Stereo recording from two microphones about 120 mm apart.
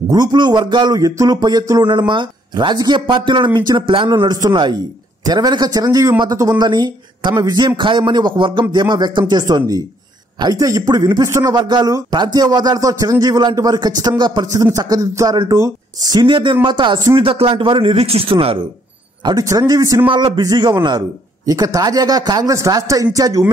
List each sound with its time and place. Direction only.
0.1 s speech: 35° right (ahead or behind)
11.5 s speech: 35° right (ahead or behind)
14.5 s speech: 30° right (ahead or behind); by 18.6 s 50° right (ahead or behind)
19.2 s speech: 30° right (ahead or behind)